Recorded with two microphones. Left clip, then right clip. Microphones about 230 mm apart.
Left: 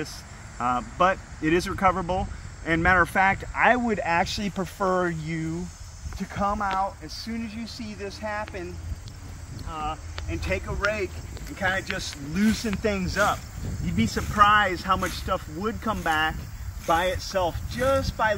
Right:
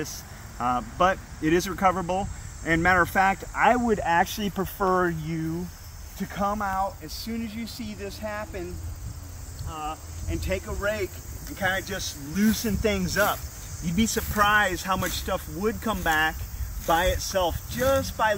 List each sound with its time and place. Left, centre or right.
0.0 s speech: centre
6.1 s speech: centre
9.7 s speech: centre